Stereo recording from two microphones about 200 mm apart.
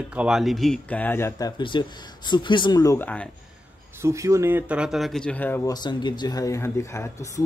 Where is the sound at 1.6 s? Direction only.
25° left (ahead or behind); by 3.2 s 10° left (ahead or behind).